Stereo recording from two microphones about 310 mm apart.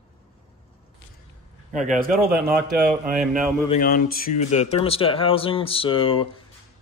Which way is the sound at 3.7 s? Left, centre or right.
Left.